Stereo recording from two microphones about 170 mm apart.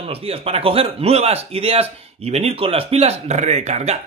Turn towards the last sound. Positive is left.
turn(degrees=-40)  # may be behind; listen again after turning